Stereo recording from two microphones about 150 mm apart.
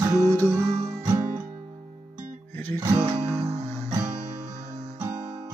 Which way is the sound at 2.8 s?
20° right (ahead or behind).